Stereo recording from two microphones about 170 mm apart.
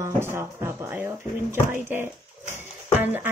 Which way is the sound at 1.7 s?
10° right (ahead or behind).